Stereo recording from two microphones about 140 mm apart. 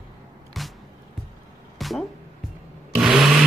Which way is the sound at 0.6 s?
Centre (ahead or behind).